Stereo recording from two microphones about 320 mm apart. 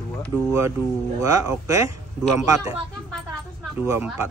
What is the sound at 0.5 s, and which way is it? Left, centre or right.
Speech, centre.